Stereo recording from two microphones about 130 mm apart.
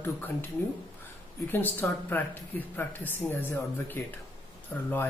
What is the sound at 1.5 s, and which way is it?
Speech, 15° left (ahead or behind).